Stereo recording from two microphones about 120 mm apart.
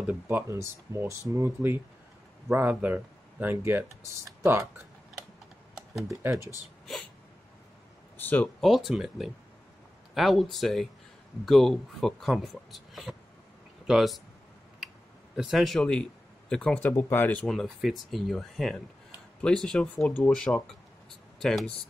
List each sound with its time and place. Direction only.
0.0 s speech: 15° right (ahead or behind)
5.8 s a sound: centre (ahead or behind)
8.2 s speech: 15° left (ahead or behind)
8.5 s speech: centre (ahead or behind)
15.3 s a man's voice: centre (ahead or behind)
16.9 s speech: 20° left (ahead or behind)
17.5 s speech: centre (ahead or behind)